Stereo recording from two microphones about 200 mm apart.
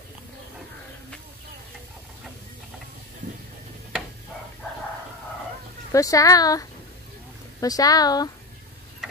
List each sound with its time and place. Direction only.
5.9 s speech: 15° left (ahead or behind)